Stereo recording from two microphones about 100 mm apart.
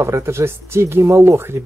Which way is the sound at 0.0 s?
25° right (ahead or behind).